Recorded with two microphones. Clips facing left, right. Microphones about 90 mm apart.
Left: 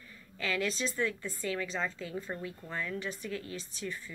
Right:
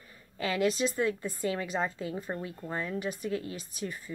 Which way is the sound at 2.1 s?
25° right (ahead or behind).